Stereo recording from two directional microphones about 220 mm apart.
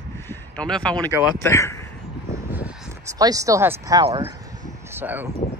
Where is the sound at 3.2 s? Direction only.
15° right (ahead or behind).